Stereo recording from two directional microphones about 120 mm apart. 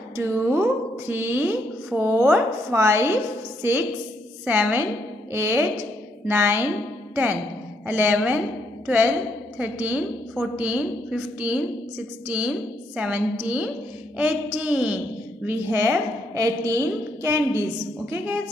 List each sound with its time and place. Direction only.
0.1 s a woman's voice: 20° right (ahead or behind)
4.5 s a woman's voice: 10° right (ahead or behind)
7.8 s a woman's voice: 15° right (ahead or behind)